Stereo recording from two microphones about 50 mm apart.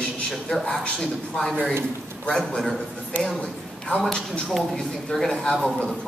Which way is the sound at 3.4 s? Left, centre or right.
Left.